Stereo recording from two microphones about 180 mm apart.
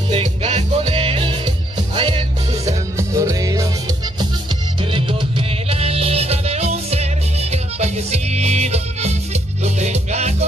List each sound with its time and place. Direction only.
0.1 s music: 35° right (ahead or behind)
2.6 s music: 20° right (ahead or behind)
4.9 s music: 30° right (ahead or behind)